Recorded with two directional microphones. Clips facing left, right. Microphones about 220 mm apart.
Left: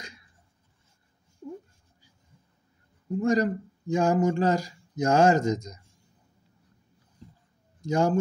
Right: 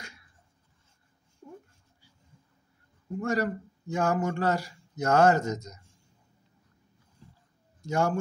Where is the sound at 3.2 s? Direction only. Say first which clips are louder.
Left 5 dB; 15° left (ahead or behind).